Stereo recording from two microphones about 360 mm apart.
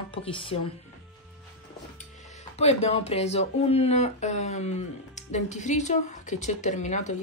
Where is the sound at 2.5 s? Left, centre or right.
Centre.